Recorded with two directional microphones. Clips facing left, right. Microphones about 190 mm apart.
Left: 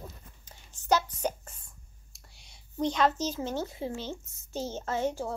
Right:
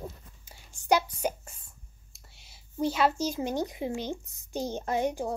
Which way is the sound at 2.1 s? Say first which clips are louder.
Even; 5° right (ahead or behind).